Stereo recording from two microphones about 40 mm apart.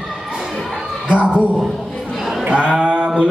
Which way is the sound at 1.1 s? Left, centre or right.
Right.